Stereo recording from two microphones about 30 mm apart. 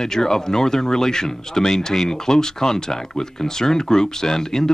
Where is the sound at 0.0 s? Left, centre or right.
Centre.